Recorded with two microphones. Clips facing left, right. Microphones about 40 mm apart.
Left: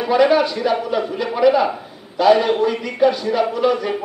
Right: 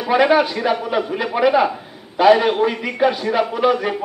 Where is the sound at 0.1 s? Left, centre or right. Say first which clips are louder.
Even; right.